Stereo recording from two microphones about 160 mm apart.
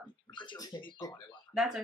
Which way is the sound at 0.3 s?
30° left (ahead or behind).